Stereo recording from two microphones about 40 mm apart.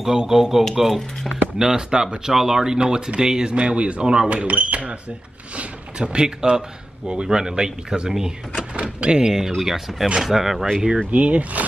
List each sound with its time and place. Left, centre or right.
0.0 s speech: centre
1.6 s speech: centre
3.5 s speech: right
4.3 s speech: right
5.6 s speech: right
9.3 s speech: centre
11.1 s speech: right